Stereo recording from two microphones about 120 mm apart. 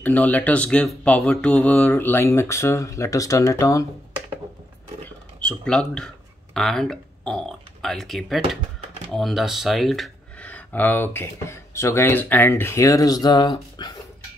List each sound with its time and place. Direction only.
0.0 s speech: 15° left (ahead or behind)
5.0 s speech: 10° left (ahead or behind)
10.4 s speech: 15° left (ahead or behind); by 13.9 s 35° left (ahead or behind)